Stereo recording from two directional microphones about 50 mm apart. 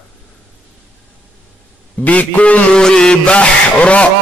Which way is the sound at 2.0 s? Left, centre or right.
Left.